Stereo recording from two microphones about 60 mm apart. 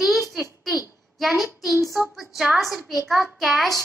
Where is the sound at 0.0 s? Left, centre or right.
Centre.